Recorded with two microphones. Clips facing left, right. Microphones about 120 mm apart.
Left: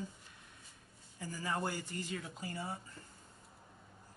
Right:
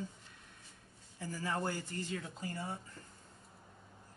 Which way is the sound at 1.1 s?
15° left (ahead or behind).